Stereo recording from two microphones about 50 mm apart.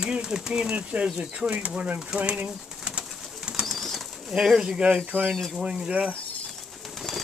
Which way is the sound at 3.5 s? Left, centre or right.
Right.